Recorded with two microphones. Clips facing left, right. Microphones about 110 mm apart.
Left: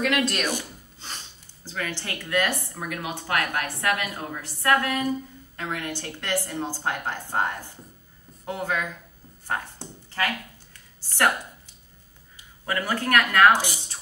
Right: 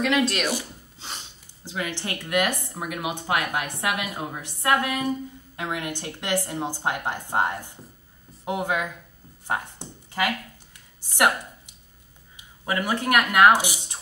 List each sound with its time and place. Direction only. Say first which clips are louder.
0.3 s speech: right 1 dB; 10° right (ahead or behind)
9.5 s a sound: right 2 dB; 15° right (ahead or behind)
11.1 s speech: right 1 dB; 15° right (ahead or behind)